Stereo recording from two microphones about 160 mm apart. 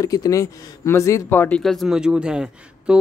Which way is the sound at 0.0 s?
20° left (ahead or behind).